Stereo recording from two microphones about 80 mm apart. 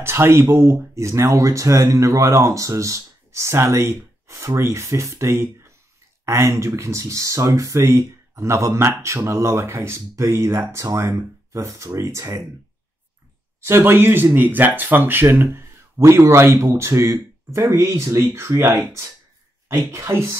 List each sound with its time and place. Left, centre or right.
0.0 s speech: right
13.7 s speech: right